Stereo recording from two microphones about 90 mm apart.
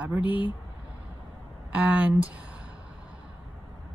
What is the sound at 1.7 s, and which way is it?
Speech, 15° right (ahead or behind).